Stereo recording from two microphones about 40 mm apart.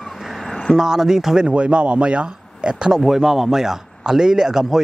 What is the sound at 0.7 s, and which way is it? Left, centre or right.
Speech, centre.